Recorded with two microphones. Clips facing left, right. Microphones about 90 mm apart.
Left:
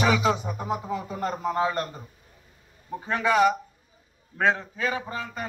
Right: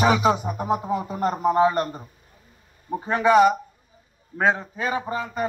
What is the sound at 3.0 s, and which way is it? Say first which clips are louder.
A man's voice: right 5 dB; 20° right (ahead or behind).